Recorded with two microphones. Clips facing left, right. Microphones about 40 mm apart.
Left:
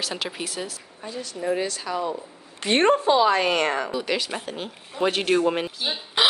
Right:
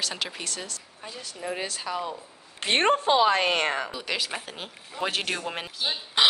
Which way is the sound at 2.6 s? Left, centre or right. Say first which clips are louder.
Left 3 dB; right.